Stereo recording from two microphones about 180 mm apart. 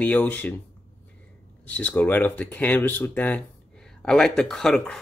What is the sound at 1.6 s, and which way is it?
Speech, 10° left (ahead or behind).